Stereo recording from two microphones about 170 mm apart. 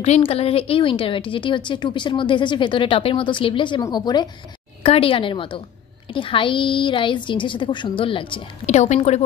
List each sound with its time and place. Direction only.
0.0 s a woman's voice: 40° left (ahead or behind)